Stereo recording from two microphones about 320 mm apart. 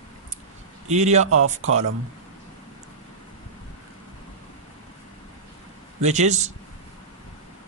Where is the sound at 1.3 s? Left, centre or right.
Right.